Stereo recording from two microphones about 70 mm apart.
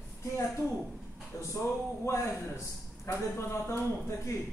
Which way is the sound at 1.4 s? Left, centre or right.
Left.